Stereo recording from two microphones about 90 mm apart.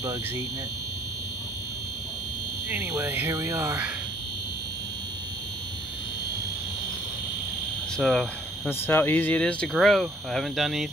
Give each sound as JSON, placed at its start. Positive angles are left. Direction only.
{"t": 3.1, "sound": "speech", "side_deg": -20}
{"t": 3.4, "sound": "speech", "side_deg": -35}
{"t": 8.0, "sound": "speech", "side_deg": 5}
{"t": 8.6, "sound": "speech", "side_deg": 25}
{"t": 9.8, "sound": "speech", "side_deg": 5}